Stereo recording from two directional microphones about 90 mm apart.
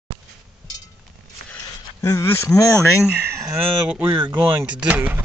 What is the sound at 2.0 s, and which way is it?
Speech, 30° left (ahead or behind).